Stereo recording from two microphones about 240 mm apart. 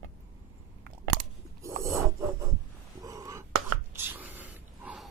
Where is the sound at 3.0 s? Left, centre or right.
Centre.